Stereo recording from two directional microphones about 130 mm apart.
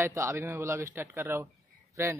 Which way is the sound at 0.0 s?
20° right (ahead or behind).